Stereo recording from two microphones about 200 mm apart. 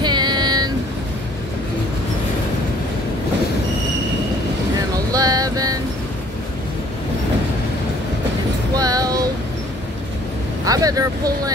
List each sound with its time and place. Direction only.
0.0 s vehicle: 20° right (ahead or behind)
4.9 s a sound: 20° right (ahead or behind)
8.7 s child singing: 20° right (ahead or behind)
10.6 s vehicle: 20° right (ahead or behind)